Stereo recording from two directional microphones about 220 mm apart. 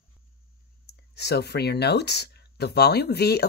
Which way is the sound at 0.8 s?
50° left (ahead or behind).